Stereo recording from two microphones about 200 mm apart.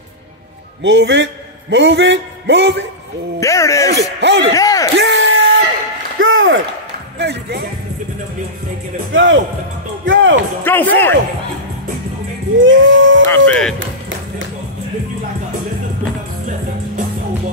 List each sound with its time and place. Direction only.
0.8 s a man's voice: 65° right (ahead or behind)
3.3 s speech: 15° left (ahead or behind)
3.9 s speech: 60° right (ahead or behind)
4.6 s speech: 15° left (ahead or behind)
4.9 s a sound: 70° right (ahead or behind)
7.2 s speech: 60° right (ahead or behind)
9.1 s music: 70° right (ahead or behind)
10.6 s speech: 10° left (ahead or behind)
12.5 s music: 70° right (ahead or behind)
13.3 s speech: 5° left (ahead or behind)
16.4 s music: 35° right (ahead or behind)